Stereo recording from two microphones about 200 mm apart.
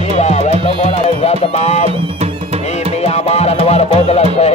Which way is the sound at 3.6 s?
35° left (ahead or behind).